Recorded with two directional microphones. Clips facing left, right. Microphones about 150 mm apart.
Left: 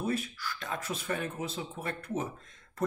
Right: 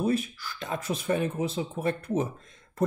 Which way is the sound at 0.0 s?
20° right (ahead or behind).